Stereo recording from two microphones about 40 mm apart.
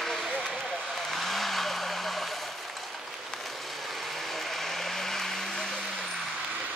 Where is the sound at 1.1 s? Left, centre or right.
Centre.